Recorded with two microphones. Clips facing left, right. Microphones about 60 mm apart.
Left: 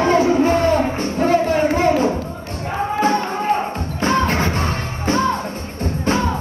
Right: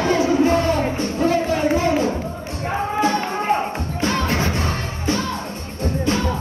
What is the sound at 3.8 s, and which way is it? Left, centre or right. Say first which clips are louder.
Music: left 4 dB; left.